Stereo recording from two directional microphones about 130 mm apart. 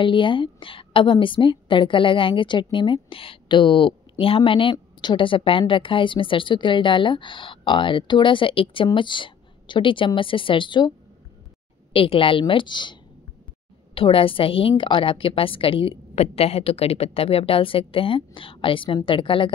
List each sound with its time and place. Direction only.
0.0 s a woman's voice: 40° left (ahead or behind)
11.9 s a woman's voice: 45° left (ahead or behind)